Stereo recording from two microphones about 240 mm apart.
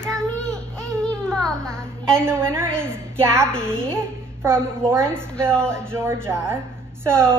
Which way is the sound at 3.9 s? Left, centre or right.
Centre.